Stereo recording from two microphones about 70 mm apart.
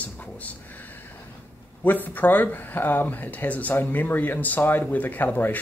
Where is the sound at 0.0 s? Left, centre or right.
Left.